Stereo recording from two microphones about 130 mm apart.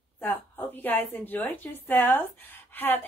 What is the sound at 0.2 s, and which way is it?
A woman's voice, 15° left (ahead or behind).